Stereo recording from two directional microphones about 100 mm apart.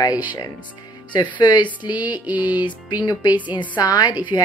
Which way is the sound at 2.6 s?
40° left (ahead or behind).